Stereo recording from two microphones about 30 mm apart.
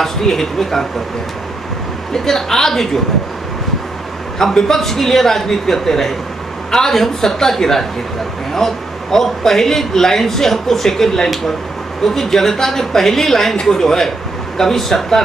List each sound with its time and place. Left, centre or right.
0.0 s a man's voice: centre
2.1 s a man's voice: centre
4.4 s a man's voice: centre